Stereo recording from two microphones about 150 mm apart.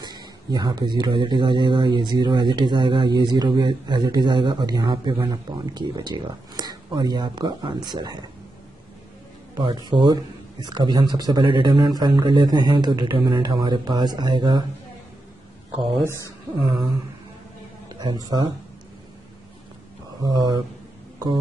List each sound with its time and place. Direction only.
0.0 s a man's voice: 30° right (ahead or behind)
9.6 s a man's voice: 30° right (ahead or behind)
16.1 s speech: 20° left (ahead or behind)
17.8 s a man's voice: 25° right (ahead or behind)
20.2 s a man's voice: 25° right (ahead or behind)